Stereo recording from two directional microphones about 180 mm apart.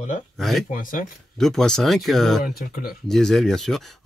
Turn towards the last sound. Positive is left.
turn(degrees=0)  # may be behind; listen again after turning